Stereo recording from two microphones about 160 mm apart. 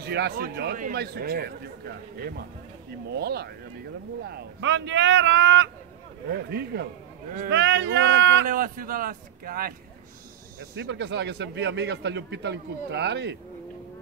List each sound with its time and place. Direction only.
0.0 s a man's voice: 90° right; by 2.4 s 70° right (ahead or behind)
3.1 s a man's voice: 85° right; by 9.8 s 65° right (ahead or behind)
10.8 s a man's voice: 90° right